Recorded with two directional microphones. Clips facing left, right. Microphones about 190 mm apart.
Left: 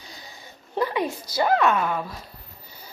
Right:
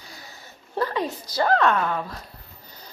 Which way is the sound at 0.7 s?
15° left (ahead or behind).